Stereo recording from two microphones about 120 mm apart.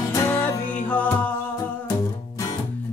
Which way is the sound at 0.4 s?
10° left (ahead or behind).